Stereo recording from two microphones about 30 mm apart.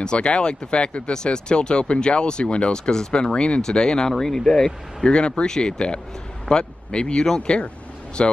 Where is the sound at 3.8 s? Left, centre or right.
Left.